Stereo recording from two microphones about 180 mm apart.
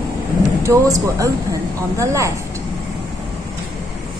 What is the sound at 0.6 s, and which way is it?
Speech, 15° right (ahead or behind).